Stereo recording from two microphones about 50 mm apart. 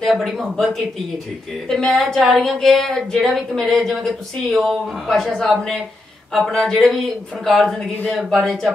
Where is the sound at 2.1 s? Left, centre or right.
Centre.